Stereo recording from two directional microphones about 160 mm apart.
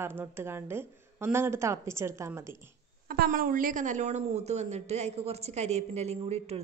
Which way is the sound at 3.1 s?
65° right (ahead or behind).